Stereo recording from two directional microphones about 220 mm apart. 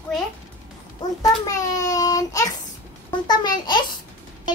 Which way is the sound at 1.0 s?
15° left (ahead or behind).